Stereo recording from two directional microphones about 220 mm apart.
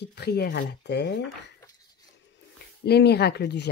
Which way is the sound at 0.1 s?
45° left (ahead or behind).